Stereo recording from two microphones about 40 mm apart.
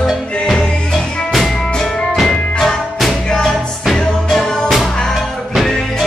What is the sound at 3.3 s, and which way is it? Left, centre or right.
Music, left.